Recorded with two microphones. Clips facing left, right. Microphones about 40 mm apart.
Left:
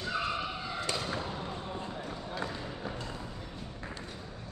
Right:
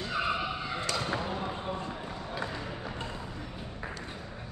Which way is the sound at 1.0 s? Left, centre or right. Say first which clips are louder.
Right 4 dB; right.